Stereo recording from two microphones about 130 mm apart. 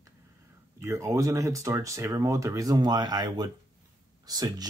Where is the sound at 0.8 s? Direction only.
25° right (ahead or behind).